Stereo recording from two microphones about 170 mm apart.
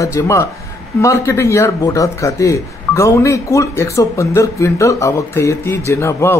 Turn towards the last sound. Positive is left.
turn(degrees=15)  # may be behind; listen again after turning